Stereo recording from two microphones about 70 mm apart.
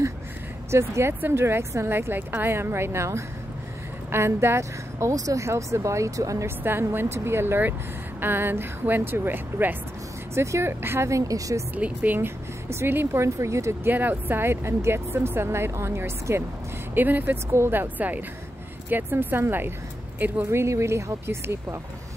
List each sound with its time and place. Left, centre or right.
0.7 s speech: right
6.6 s speech: right
10.3 s speech: right
11.7 s speech: right
12.6 s speech: right
13.8 s speech: right
20.4 s speech: right